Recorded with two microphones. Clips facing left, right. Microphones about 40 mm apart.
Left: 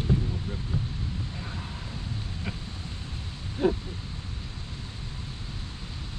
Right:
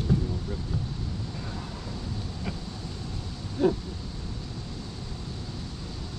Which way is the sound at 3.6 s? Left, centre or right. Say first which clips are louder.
Right 1 dB; left.